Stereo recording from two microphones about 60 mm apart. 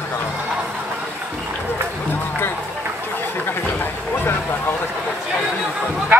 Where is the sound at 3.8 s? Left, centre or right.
Left.